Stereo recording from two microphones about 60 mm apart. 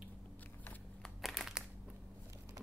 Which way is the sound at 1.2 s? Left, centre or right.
Centre.